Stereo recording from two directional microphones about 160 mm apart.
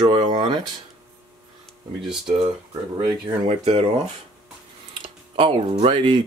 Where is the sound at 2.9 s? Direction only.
35° right (ahead or behind).